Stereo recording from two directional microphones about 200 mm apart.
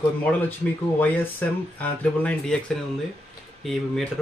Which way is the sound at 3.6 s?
Centre (ahead or behind).